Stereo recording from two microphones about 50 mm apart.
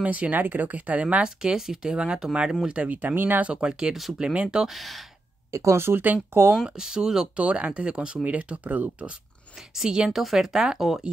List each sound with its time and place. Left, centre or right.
0.0 s speech: right
0.3 s speech: right
1.2 s speech: centre; by 3.2 s right
3.2 s speech: right
3.4 s speech: centre
4.6 s speech: centre
5.5 s speech: right
5.8 s speech: right
6.7 s speech: centre
7.3 s speech: right
9.8 s speech: centre